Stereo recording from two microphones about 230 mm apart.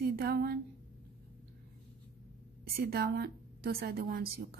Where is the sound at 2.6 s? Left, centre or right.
Right.